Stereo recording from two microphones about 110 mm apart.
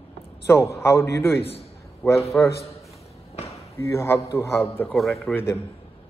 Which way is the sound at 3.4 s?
70° left (ahead or behind).